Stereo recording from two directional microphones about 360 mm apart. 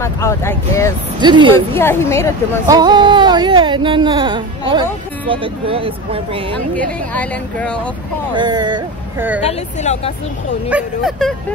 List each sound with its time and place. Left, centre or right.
0.0 s speech: centre
1.2 s speech: centre
1.7 s speech: centre
2.7 s speech: centre
6.7 s speech: centre
8.4 s speech: centre
9.5 s speech: centre
10.7 s speech: centre